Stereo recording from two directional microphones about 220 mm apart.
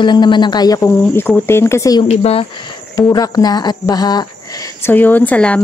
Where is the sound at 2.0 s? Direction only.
25° left (ahead or behind).